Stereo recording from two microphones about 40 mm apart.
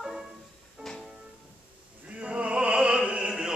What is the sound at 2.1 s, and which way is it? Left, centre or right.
Opera, right.